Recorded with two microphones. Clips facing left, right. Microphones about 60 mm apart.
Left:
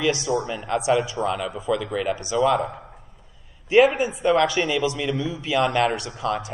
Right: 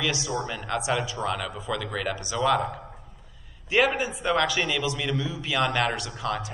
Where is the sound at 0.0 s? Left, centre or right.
Left.